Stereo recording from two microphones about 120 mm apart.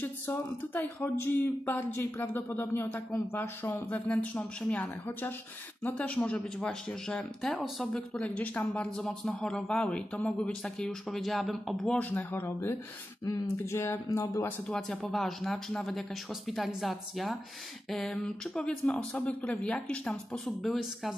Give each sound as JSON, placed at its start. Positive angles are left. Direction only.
{"t": 0.0, "sound": "speech", "side_deg": 15}
{"t": 12.3, "sound": "speech", "side_deg": 20}
{"t": 14.7, "sound": "speech", "side_deg": 5}